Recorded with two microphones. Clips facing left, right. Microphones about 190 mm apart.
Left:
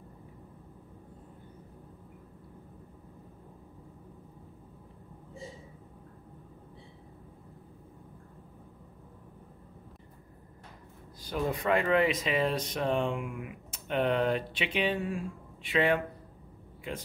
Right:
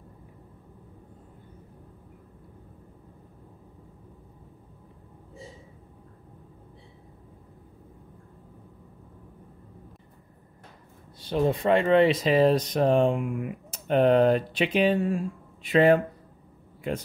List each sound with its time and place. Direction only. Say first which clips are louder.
11.1 s speech: right 7 dB; 25° right (ahead or behind)